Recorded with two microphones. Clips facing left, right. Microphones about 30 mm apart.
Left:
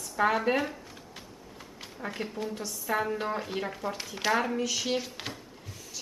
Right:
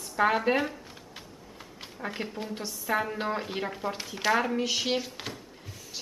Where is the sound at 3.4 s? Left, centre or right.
Centre.